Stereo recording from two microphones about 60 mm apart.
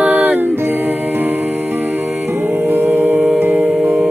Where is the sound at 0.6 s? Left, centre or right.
Right.